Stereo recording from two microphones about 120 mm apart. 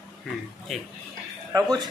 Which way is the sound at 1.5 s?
30° right (ahead or behind).